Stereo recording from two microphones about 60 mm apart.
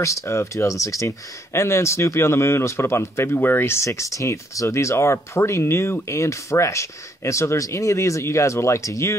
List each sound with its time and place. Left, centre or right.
0.0 s speech: left
3.3 s speech: left
6.0 s speech: left